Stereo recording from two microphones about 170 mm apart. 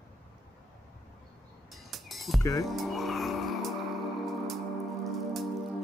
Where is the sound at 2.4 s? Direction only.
20° left (ahead or behind).